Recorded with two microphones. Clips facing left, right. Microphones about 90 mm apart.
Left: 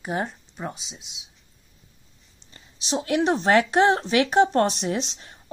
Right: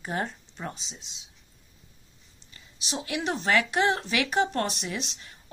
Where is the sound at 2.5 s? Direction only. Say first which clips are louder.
Left 8 dB; 35° left (ahead or behind).